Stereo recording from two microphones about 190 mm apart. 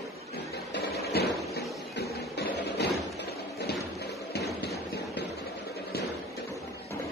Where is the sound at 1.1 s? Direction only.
60° left (ahead or behind).